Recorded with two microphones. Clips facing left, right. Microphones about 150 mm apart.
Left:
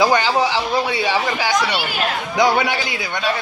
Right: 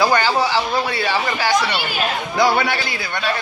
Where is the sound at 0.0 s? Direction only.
20° left (ahead or behind).